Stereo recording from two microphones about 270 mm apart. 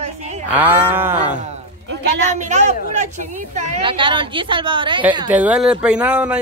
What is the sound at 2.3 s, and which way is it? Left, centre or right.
A woman's voice, right.